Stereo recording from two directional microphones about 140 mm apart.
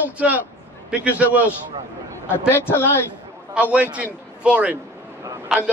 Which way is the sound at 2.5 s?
15° left (ahead or behind).